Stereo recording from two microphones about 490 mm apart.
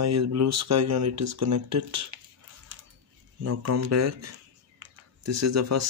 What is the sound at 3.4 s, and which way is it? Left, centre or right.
Speech, right.